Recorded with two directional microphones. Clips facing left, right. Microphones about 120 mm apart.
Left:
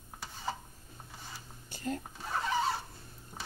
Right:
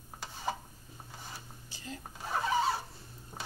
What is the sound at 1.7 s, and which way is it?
Dishes, 50° left (ahead or behind).